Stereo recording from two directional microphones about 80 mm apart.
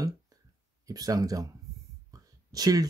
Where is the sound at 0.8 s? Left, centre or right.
Right.